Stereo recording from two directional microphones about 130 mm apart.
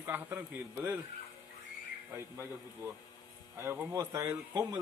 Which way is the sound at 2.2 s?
20° right (ahead or behind).